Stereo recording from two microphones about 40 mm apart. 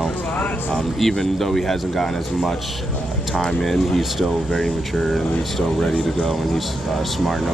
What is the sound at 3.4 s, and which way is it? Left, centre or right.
Speech, centre.